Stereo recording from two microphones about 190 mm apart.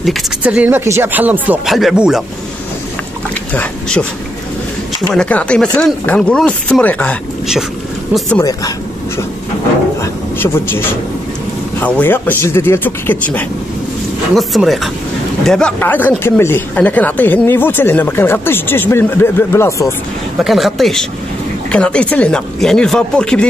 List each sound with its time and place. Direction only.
0.0 s speech: 5° right (ahead or behind)
5.1 s speech: 5° left (ahead or behind)
8.4 s speech: 20° left (ahead or behind)
10.4 s speech: 10° left (ahead or behind)
20.4 s speech: centre (ahead or behind)